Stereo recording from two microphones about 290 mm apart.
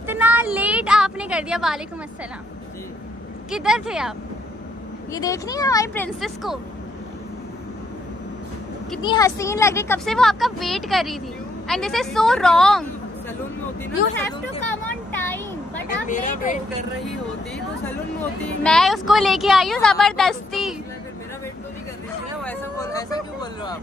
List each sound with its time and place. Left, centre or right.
0.0 s a sound: centre
3.4 s speech: centre
5.1 s speech: centre
9.0 s speech: centre
14.9 s a sound: centre
16.1 s speech: left
18.6 s speech: centre
22.4 s vehicle: centre